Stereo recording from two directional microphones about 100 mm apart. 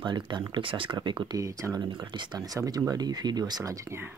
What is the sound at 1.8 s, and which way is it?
Speech, 50° right (ahead or behind).